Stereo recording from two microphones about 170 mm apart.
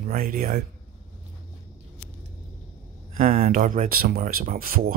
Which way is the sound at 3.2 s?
50° right (ahead or behind).